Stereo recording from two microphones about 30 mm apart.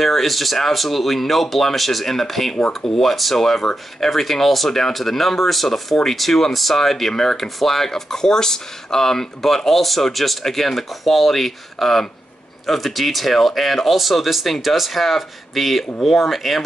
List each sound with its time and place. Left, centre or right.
0.0 s a man's voice: centre
7.4 s a man's voice: centre